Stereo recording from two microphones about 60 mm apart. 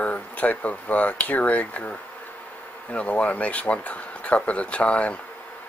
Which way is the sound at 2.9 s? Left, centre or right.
Left.